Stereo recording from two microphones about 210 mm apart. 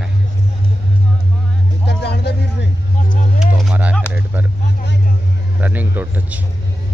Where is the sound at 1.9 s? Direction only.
55° left (ahead or behind).